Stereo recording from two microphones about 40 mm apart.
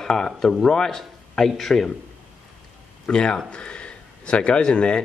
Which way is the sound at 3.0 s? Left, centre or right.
Left.